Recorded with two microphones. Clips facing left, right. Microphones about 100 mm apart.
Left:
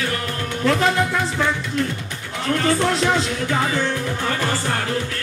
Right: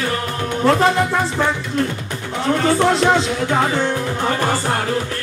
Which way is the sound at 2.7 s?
40° right (ahead or behind).